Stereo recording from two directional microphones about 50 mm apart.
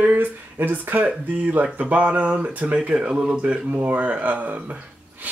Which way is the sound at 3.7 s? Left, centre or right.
Right.